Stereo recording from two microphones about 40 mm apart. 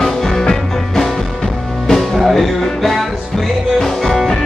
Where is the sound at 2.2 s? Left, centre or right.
Centre.